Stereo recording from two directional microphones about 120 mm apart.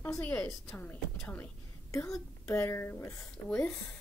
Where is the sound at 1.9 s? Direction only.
25° left (ahead or behind).